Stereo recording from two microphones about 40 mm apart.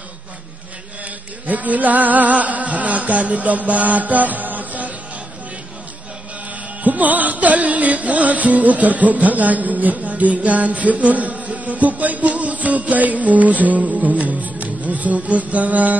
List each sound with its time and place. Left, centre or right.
1.5 s music: right
6.8 s music: right